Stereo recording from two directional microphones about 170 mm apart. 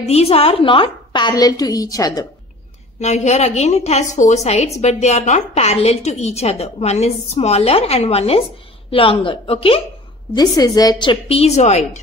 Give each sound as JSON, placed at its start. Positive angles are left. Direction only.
{"t": 0.0, "sound": "a woman's voice", "side_deg": 35}
{"t": 3.0, "sound": "a woman's voice", "side_deg": 40}
{"t": 10.3, "sound": "a woman's voice", "side_deg": 25}